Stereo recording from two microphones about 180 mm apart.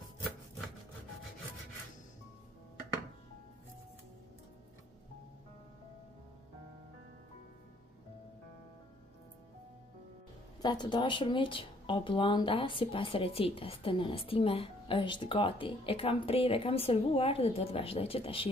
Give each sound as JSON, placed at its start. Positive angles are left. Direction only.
{"t": 10.6, "sound": "speech", "side_deg": 25}